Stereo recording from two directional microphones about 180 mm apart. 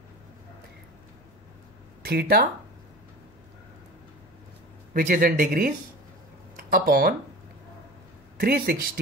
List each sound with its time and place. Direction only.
2.0 s speech: 60° right (ahead or behind)
4.9 s a man's voice: 50° right (ahead or behind)
6.7 s speech: 60° right (ahead or behind)
8.4 s speech: 55° right (ahead or behind)